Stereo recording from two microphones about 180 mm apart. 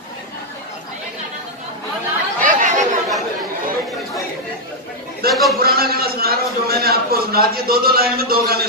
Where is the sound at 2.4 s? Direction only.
45° right (ahead or behind).